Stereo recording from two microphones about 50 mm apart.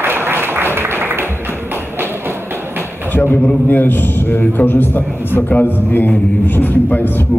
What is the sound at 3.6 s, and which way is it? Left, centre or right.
A man's voice, left.